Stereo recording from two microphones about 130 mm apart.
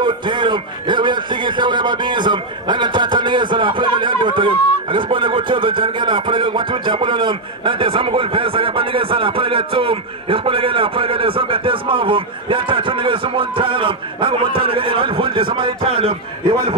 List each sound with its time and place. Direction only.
0.0 s a man's voice: 35° right (ahead or behind)